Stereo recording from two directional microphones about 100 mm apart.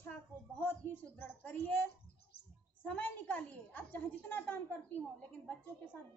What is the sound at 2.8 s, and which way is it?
A woman's voice, 15° left (ahead or behind).